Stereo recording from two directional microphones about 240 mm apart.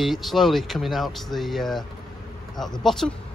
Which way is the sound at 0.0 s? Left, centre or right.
Centre.